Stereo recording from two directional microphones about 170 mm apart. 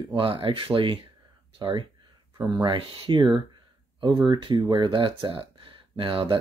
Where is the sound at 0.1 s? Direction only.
30° right (ahead or behind).